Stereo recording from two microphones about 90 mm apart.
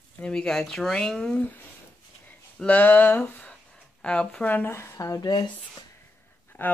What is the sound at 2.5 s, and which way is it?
Speech, 15° left (ahead or behind).